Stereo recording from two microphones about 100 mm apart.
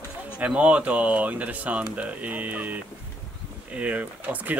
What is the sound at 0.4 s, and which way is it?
A man's voice, 15° right (ahead or behind).